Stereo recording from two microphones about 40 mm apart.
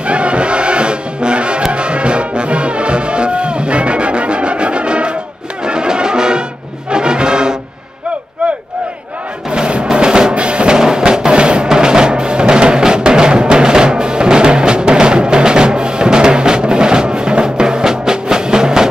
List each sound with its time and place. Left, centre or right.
0.0 s music: right
6.9 s brass instrument: right
9.5 s music: right